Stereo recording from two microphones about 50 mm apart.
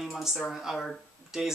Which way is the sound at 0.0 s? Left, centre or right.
Centre.